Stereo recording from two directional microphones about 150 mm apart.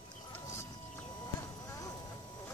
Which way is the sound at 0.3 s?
15° left (ahead or behind).